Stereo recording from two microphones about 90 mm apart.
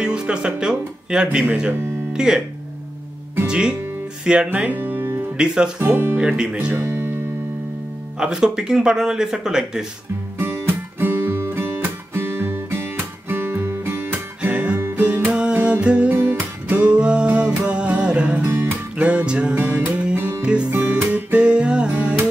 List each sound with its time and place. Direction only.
0.0 s speech: 10° right (ahead or behind)
3.4 s speech: 10° right (ahead or behind)
5.4 s speech: 10° right (ahead or behind)
5.9 s speech: 25° right (ahead or behind)
6.2 s speech: 10° right (ahead or behind)
6.8 s music: 25° right (ahead or behind)
8.2 s speech: 10° right (ahead or behind)
10.4 s music: 25° right (ahead or behind)
16.1 s music: 25° right (ahead or behind)
18.4 s music: 30° right (ahead or behind)
18.9 s music: 15° right (ahead or behind)
20.4 s music: 10° right (ahead or behind)